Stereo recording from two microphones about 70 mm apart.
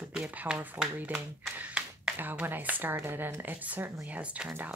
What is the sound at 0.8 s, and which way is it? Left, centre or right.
Speech, right.